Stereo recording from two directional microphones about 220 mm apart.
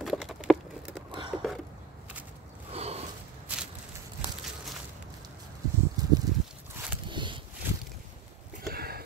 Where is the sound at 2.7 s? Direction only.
30° right (ahead or behind).